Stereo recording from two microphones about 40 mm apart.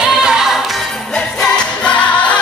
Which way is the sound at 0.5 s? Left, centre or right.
Centre.